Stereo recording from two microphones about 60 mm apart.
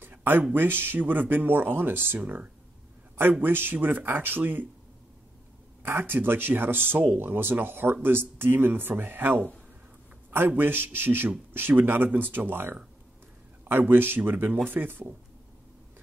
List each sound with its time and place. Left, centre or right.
0.0 s a sound: right
0.4 s speech: right
5.8 s speech: right